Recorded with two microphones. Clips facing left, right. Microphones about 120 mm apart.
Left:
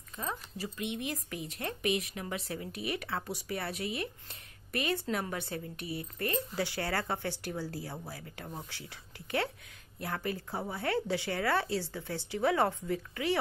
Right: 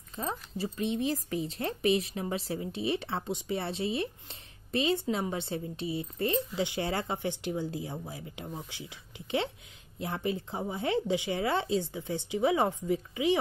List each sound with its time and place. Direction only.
0.1 s speech: 30° right (ahead or behind)